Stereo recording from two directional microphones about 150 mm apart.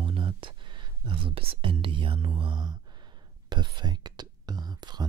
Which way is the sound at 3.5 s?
30° right (ahead or behind).